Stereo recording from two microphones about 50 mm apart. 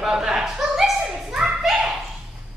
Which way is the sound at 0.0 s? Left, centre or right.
Centre.